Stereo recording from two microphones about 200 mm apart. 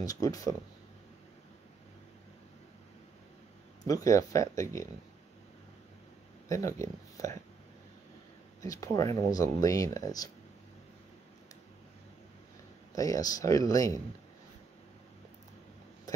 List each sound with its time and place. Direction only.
0.0 s speech: 20° left (ahead or behind)
3.8 s speech: 15° left (ahead or behind)
6.5 s speech: 15° left (ahead or behind)
8.6 s speech: 15° left (ahead or behind)
12.9 s speech: 15° left (ahead or behind)